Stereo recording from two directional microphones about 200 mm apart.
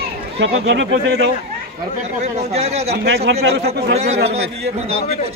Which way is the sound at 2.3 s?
30° right (ahead or behind).